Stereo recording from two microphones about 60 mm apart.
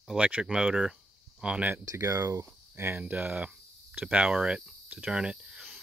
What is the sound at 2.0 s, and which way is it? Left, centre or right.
Speech, right.